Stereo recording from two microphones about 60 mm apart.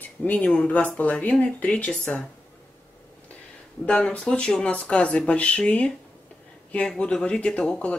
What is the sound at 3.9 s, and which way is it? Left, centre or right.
Speech, centre.